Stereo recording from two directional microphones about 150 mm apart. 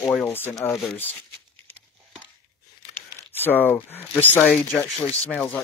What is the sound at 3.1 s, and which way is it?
Speech, 15° left (ahead or behind).